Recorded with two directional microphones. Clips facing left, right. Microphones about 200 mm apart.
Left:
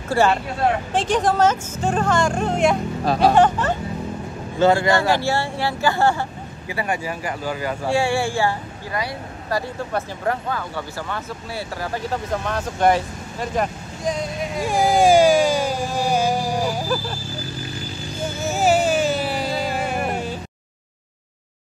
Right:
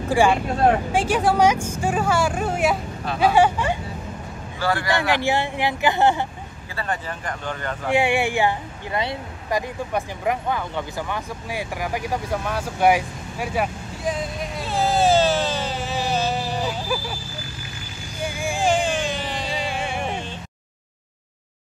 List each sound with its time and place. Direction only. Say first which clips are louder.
0.1 s speech: even; 10° right (ahead or behind)
3.1 s speech: left 3 dB; 40° left (ahead or behind)
3.3 s speech: left 1 dB; 10° right (ahead or behind)
4.6 s speech: left 7 dB; 20° left (ahead or behind)
4.9 s speech: left 2 dB; 15° right (ahead or behind)
6.7 s speech: left 4 dB; 10° left (ahead or behind)
7.9 s speech: right 1 dB; 20° right (ahead or behind); by 14.6 s centre (ahead or behind)
14.6 s a sound: left 4 dB; 15° left (ahead or behind)
18.2 s a sound: left 1 dB; 15° right (ahead or behind)
18.6 s music: left 4 dB; 5° left (ahead or behind)
20.0 s a sound: left 4 dB; 5° left (ahead or behind)